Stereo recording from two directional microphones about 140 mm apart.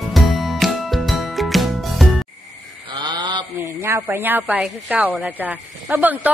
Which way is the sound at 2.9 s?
35° right (ahead or behind).